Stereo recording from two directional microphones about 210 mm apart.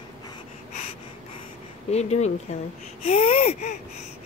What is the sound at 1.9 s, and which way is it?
Speech, 30° left (ahead or behind).